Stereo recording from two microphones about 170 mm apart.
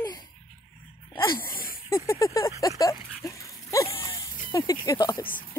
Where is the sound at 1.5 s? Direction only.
55° left (ahead or behind).